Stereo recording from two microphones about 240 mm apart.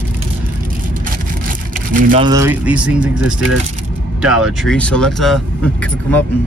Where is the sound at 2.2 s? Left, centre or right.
Centre.